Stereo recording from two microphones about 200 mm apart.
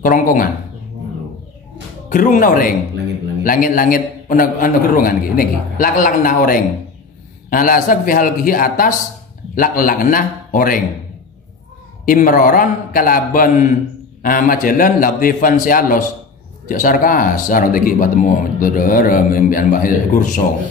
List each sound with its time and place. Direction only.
0.0 s speech: 40° left (ahead or behind)
2.0 s speech: 40° left (ahead or behind)
12.1 s speech: 45° left (ahead or behind)